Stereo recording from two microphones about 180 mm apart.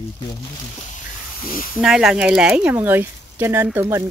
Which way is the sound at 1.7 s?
5° right (ahead or behind).